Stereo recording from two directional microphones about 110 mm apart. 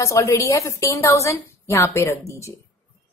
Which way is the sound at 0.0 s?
25° left (ahead or behind).